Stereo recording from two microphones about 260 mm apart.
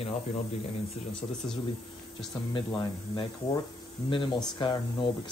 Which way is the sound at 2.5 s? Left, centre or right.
Centre.